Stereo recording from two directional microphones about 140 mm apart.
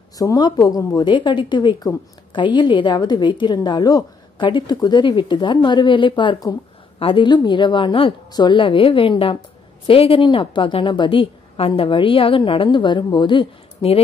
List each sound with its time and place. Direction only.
0.2 s a woman's voice: 30° left (ahead or behind)